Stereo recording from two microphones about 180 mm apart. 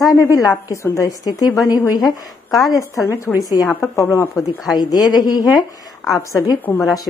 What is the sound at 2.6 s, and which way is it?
A woman's voice, 20° left (ahead or behind).